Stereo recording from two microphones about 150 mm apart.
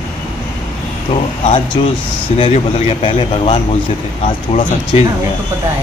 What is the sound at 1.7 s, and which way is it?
Speech, 35° left (ahead or behind).